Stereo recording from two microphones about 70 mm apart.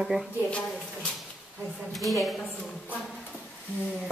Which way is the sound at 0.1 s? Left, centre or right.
Right.